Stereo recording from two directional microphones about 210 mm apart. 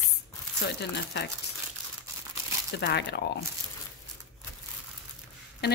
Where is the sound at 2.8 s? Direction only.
55° left (ahead or behind).